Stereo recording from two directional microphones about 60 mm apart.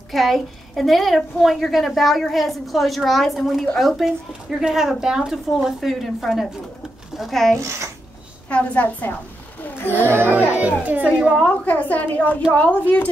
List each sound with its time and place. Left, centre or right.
0.1 s a woman's voice: centre
8.5 s a woman's voice: left
10.0 s a child's voice: right
10.3 s a woman's voice: right
11.4 s a woman's voice: left